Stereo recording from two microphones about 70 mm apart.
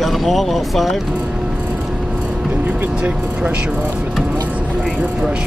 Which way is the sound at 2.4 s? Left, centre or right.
Right.